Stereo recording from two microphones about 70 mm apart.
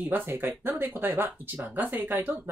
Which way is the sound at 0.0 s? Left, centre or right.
Right.